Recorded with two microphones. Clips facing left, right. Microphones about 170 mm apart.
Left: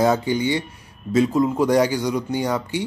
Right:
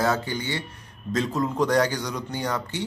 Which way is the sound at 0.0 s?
15° left (ahead or behind).